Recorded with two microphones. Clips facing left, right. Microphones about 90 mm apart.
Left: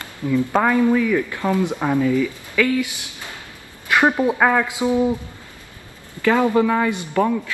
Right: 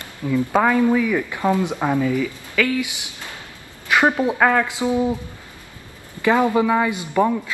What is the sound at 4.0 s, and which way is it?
Speech, 15° left (ahead or behind).